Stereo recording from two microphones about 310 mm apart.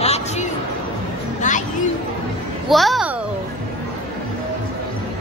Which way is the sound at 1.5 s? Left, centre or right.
Left.